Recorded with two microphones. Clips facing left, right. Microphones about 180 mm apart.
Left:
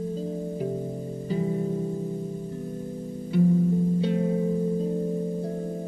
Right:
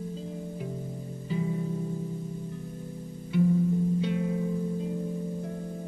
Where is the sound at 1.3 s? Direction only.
40° left (ahead or behind).